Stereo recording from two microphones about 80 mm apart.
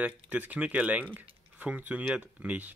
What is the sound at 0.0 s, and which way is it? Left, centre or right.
Speech, centre.